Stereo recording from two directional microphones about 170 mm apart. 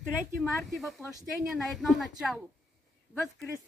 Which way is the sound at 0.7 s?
Centre (ahead or behind).